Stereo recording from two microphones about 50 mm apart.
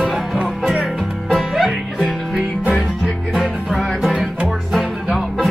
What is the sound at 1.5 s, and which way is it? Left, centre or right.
Music, centre.